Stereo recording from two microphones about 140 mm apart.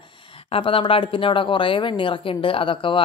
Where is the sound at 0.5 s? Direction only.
40° left (ahead or behind).